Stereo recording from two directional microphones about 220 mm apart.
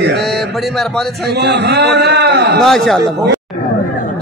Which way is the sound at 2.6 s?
Centre (ahead or behind).